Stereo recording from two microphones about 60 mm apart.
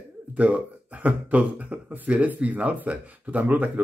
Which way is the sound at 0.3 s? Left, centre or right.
Right.